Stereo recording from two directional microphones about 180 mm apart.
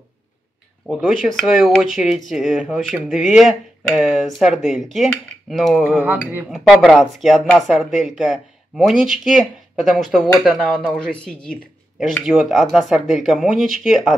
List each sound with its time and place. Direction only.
0.8 s speech: centre (ahead or behind)
5.9 s speech: 10° right (ahead or behind)